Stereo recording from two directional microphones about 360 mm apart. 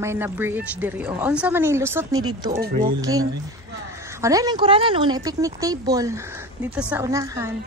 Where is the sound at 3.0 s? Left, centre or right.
Centre.